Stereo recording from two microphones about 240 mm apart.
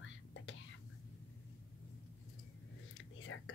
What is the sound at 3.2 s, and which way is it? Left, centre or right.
Whispering, left.